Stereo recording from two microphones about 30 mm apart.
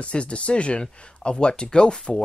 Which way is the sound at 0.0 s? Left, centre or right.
Left.